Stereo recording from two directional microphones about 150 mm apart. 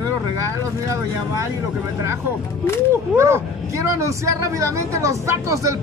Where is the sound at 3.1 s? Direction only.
15° right (ahead or behind).